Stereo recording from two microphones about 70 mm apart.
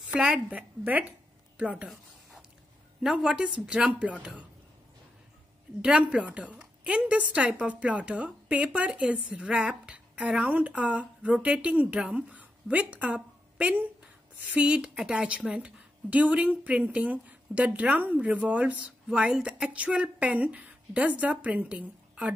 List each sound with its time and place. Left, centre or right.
0.1 s a woman's voice: centre
3.0 s a woman's voice: centre
5.8 s a woman's voice: centre
19.7 s a woman's voice: centre